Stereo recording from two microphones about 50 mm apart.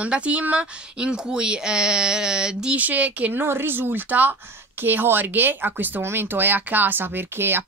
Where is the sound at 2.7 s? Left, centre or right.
Right.